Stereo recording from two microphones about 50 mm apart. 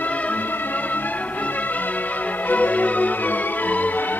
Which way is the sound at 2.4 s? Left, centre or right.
Left.